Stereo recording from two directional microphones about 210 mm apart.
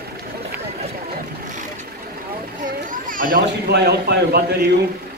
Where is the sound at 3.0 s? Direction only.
40° right (ahead or behind).